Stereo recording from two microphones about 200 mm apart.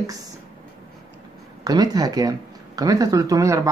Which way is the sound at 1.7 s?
20° right (ahead or behind).